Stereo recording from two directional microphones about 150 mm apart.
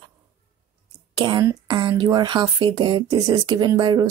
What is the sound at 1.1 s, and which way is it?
Speech, 35° right (ahead or behind).